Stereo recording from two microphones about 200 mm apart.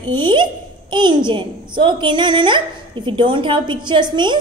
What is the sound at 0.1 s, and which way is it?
A woman's voice, 25° right (ahead or behind).